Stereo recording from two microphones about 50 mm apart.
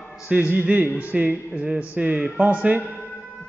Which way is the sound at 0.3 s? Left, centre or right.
Right.